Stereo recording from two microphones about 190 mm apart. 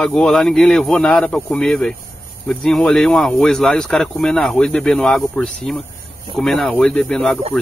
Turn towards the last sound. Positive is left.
turn(degrees=5)  # may be behind; listen again after turning